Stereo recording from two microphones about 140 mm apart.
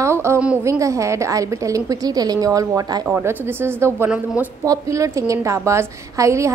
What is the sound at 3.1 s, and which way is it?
A woman's voice, 15° right (ahead or behind).